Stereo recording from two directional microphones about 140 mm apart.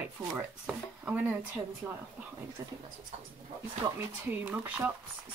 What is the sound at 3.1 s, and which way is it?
Speech, 60° right (ahead or behind).